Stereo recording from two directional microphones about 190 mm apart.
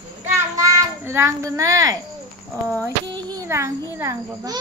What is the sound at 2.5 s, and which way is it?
Speech, 15° right (ahead or behind).